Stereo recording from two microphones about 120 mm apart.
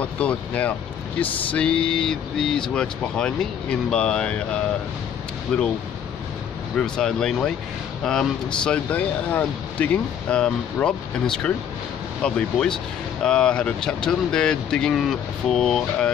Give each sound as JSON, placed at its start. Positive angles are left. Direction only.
{"t": 0.0, "sound": "speech", "side_deg": 10}
{"t": 5.5, "sound": "speech", "side_deg": 10}
{"t": 6.8, "sound": "speech", "side_deg": 5}